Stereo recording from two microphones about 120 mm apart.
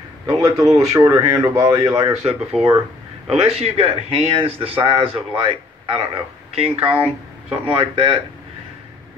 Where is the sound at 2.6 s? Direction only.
Centre (ahead or behind).